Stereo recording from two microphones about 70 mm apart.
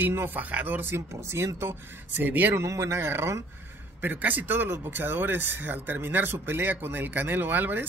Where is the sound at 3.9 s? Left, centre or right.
Right.